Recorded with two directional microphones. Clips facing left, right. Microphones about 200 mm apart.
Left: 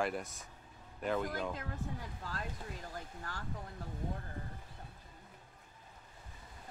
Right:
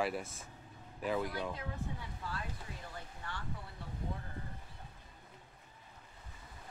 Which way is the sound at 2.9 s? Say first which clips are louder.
Left 1 dB; 40° left (ahead or behind).